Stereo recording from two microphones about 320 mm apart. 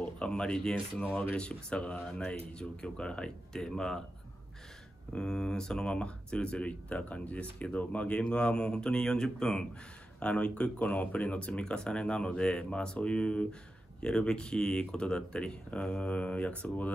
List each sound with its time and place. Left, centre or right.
0.0 s speech: centre
5.1 s speech: centre